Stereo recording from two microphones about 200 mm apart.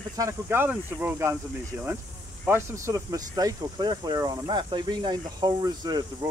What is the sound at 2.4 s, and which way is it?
Speech, 10° right (ahead or behind).